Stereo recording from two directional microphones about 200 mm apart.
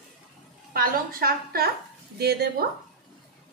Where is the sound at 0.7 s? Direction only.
45° right (ahead or behind).